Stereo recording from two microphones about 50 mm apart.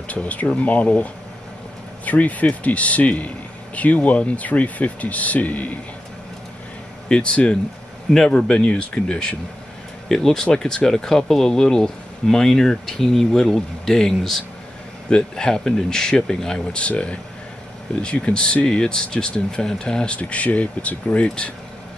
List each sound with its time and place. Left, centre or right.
0.1 s a man's voice: left
7.1 s speech: centre
20.2 s speech: left